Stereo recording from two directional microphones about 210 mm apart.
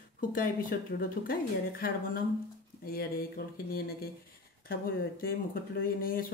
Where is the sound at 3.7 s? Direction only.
45° left (ahead or behind).